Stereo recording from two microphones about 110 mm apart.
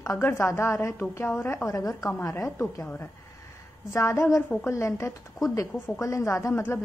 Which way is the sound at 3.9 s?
30° left (ahead or behind).